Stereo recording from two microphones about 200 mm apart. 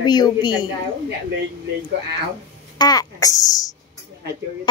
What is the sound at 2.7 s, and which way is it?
A child's voice, 20° left (ahead or behind).